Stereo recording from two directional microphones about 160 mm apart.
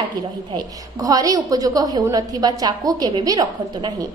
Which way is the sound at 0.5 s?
25° right (ahead or behind).